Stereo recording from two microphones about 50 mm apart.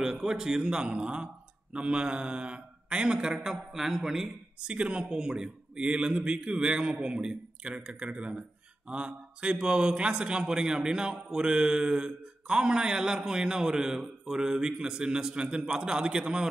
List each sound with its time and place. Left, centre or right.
0.0 s speech: centre
3.4 s speech: centre
4.6 s speech: right